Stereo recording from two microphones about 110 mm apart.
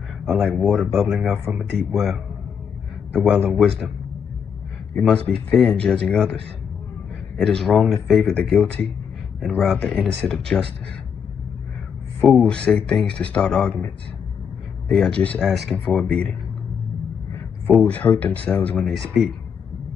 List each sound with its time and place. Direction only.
0.2 s a sound: 10° right (ahead or behind)
0.6 s speech: centre (ahead or behind)
1.3 s speech: 15° right (ahead or behind)
1.6 s speech: 5° right (ahead or behind)
3.1 s speech: 5° left (ahead or behind)
5.1 s speech: 10° left (ahead or behind)
7.3 s speech: centre (ahead or behind)
9.4 s speech: 5° right (ahead or behind)
9.8 s speech: 10° left (ahead or behind)
12.3 s speech: 10° left (ahead or behind)
17.7 s speech: 15° left (ahead or behind)
18.9 s speech: centre (ahead or behind)